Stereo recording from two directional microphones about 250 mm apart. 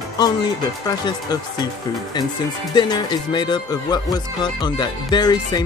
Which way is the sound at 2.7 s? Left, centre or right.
Centre.